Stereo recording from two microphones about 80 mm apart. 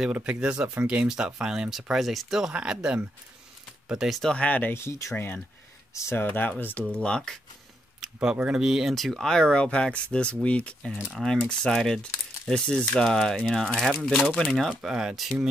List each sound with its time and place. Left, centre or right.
0.0 s speech: centre
4.2 s speech: centre
4.7 s speech: left
5.1 s speech: left
6.2 s speech: left
7.0 s speech: centre
8.0 s speech: centre